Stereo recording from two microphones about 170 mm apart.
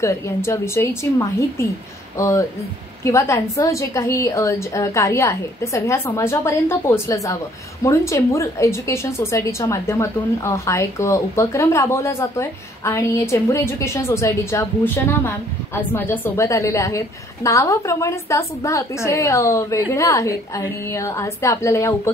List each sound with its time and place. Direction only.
0.0 s a woman's voice: 15° left (ahead or behind)